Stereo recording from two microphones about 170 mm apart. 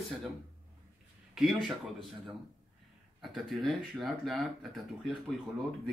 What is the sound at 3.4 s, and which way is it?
Speech, centre (ahead or behind).